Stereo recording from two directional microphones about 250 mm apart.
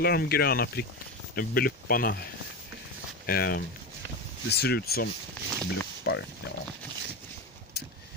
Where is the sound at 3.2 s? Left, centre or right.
Left.